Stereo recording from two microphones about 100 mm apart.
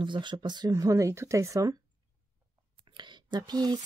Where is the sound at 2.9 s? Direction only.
50° right (ahead or behind).